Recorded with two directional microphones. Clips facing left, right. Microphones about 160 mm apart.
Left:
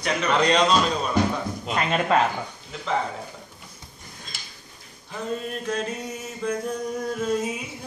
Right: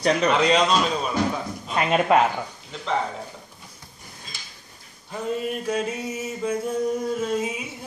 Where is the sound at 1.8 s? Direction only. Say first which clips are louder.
Right 4 dB; 15° right (ahead or behind).